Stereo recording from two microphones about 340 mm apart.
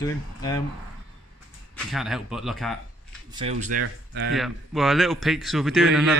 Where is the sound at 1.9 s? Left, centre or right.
Centre.